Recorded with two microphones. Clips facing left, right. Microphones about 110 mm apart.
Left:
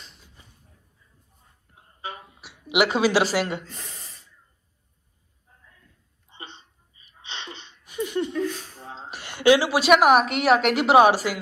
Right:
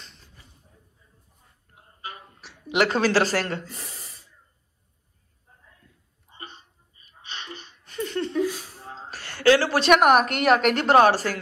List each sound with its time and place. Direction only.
0.0 s a sound: centre (ahead or behind)
2.2 s speech: 10° left (ahead or behind)
6.3 s hiccup: 25° left (ahead or behind)
7.1 s a sound: 25° left (ahead or behind)
7.8 s laughter: 15° left (ahead or behind)
9.1 s a woman's voice: 15° left (ahead or behind)